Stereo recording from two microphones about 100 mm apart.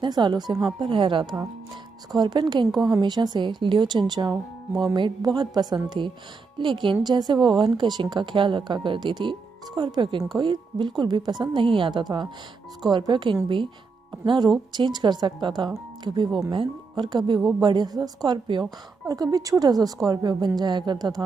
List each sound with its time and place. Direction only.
0.0 s speech: 50° right (ahead or behind)
2.1 s speech: 45° right (ahead or behind)
11.5 s a woman's voice: 60° right (ahead or behind)